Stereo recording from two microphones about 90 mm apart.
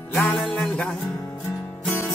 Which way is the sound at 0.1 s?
5° left (ahead or behind).